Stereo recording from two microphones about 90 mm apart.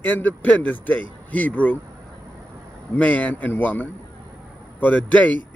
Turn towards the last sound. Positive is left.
turn(degrees=15)  # may be behind; listen again after turning